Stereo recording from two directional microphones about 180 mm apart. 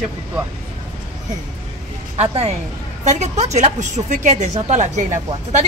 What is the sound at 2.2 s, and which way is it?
Speech, 35° right (ahead or behind).